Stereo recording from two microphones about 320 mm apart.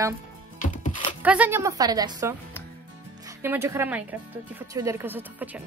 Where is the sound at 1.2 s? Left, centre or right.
Centre.